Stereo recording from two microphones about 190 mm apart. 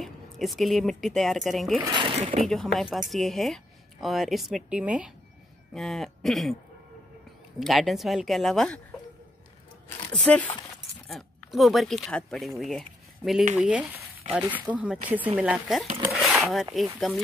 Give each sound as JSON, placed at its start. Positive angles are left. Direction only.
{"t": 0.0, "sound": "speech", "side_deg": 0}
{"t": 1.8, "sound": "speech", "side_deg": -25}
{"t": 2.4, "sound": "a woman's voice", "side_deg": 0}
{"t": 7.6, "sound": "a woman's voice", "side_deg": 0}
{"t": 10.2, "sound": "speech", "side_deg": 5}
{"t": 16.1, "sound": "a sound", "side_deg": 0}